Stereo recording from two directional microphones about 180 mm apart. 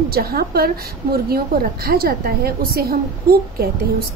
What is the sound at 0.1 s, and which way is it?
Speech, 55° right (ahead or behind).